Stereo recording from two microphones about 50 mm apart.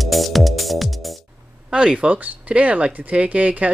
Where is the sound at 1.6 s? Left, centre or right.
Centre.